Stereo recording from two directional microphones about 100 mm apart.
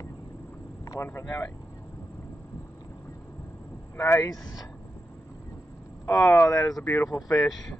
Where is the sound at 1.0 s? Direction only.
25° left (ahead or behind).